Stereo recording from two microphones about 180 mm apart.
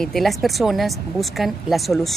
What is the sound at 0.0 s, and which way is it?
Speech, centre (ahead or behind).